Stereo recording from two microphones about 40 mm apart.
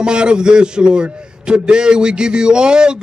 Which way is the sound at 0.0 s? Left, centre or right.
Right.